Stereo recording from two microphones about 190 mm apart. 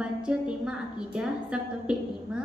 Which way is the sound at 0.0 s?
5° right (ahead or behind).